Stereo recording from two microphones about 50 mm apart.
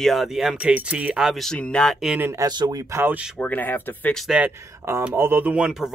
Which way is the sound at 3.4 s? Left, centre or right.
Left.